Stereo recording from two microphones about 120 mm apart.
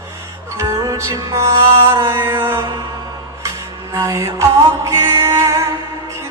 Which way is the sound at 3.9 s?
25° right (ahead or behind).